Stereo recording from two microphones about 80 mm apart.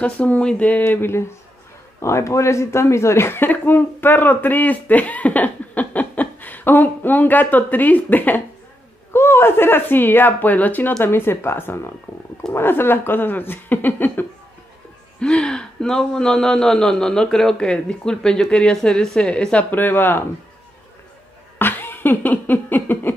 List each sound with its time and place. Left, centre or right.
0.0 s speech: centre
2.0 s speech: left
15.1 s speech: centre; by 20.2 s left
21.5 s laughter: left